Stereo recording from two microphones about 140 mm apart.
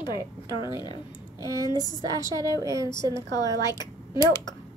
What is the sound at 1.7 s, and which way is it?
Speech, 30° left (ahead or behind).